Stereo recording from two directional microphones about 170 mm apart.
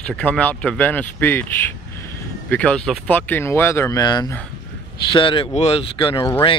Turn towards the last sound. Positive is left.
turn(degrees=30)  # may be behind; listen again after turning